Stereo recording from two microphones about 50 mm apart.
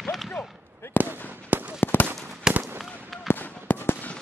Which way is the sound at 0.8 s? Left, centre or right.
Left.